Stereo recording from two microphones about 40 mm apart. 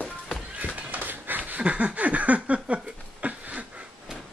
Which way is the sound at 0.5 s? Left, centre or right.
Right.